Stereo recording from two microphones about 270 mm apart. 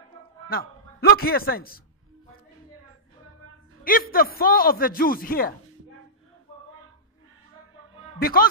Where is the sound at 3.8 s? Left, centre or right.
Left.